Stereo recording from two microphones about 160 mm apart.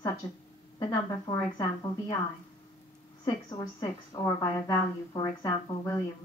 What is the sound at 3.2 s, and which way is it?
A woman's voice, 25° left (ahead or behind).